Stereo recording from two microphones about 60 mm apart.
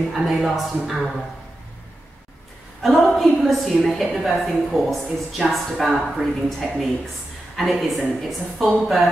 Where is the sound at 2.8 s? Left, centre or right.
Centre.